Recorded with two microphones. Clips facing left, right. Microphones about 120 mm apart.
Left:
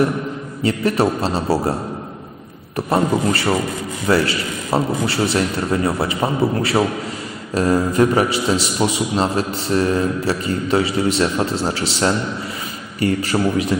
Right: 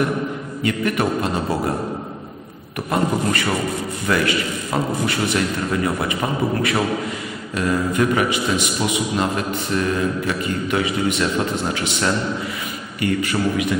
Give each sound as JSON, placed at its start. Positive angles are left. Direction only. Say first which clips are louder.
{"t": 0.7, "sound": "a man's voice", "louder": "left 3 dB", "side_deg": 30}
{"t": 2.9, "sound": "a man's voice", "louder": "left 3 dB", "side_deg": 30}